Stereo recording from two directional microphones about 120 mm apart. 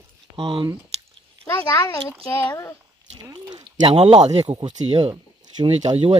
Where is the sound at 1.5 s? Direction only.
25° left (ahead or behind).